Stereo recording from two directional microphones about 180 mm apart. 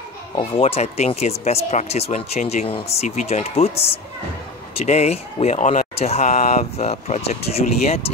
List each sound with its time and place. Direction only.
0.4 s speech: 35° left (ahead or behind)